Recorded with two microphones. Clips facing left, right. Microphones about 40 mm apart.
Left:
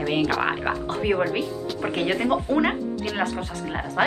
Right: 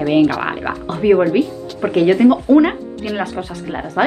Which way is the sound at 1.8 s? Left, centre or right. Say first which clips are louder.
Right 11 dB; centre.